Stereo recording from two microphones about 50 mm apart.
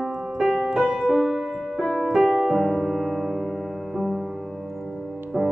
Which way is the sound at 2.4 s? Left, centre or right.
Centre.